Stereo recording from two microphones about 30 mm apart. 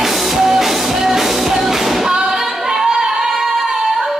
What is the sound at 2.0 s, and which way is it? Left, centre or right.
Singing, right.